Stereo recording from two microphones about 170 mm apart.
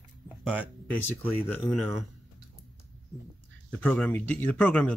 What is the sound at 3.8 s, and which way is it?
Speech, 5° left (ahead or behind).